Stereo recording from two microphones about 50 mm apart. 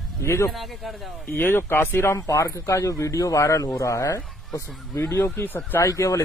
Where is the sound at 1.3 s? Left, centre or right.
Left.